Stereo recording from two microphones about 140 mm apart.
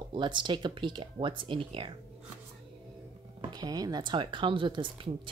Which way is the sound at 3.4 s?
30° right (ahead or behind).